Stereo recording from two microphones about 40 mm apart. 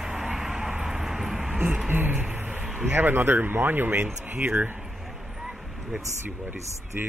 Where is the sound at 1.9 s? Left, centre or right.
Right.